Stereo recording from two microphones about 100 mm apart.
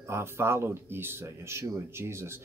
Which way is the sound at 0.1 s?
25° right (ahead or behind).